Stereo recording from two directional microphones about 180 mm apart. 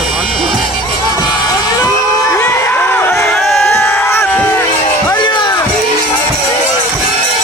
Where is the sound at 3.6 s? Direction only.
10° left (ahead or behind).